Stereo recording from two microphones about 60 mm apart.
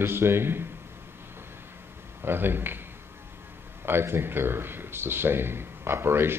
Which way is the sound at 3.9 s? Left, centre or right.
Right.